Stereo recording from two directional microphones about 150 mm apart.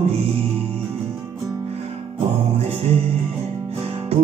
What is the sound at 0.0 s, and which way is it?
Music, 45° right (ahead or behind).